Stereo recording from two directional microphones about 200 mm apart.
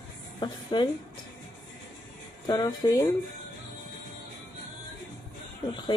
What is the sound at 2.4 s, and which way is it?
Speech, 20° left (ahead or behind).